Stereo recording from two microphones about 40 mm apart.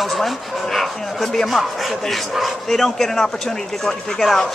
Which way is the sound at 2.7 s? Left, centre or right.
Centre.